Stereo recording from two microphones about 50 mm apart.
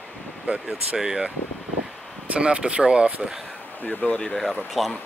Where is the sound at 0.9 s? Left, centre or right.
Centre.